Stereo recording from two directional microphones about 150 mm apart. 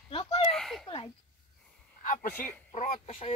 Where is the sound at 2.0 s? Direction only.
55° left (ahead or behind).